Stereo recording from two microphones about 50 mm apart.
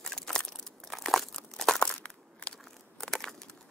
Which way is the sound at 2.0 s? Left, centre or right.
Left.